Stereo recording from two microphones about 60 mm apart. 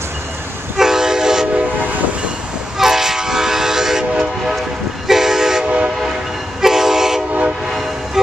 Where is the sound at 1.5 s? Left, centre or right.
Right.